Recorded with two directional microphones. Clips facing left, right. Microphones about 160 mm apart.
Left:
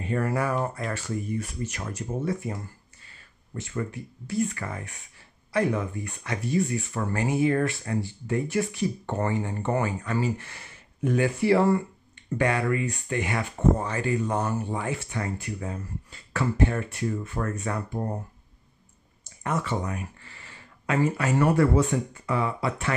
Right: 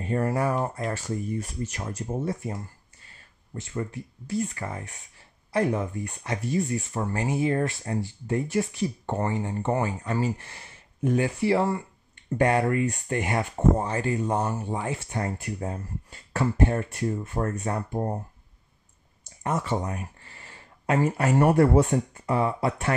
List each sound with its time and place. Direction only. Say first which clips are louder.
0.0 s speech: right 1 dB; 35° right (ahead or behind)
0.9 s speech: even; 35° right (ahead or behind)
3.7 s speech: even; 35° right (ahead or behind)
9.1 s speech: even; 25° right (ahead or behind)
12.2 s speech: right 3 dB; 45° right (ahead or behind); by 15.0 s 25° right (ahead or behind)
15.0 s speech: right 1 dB; 45° right (ahead or behind)
19.6 s speech: right 1 dB; 40° right (ahead or behind)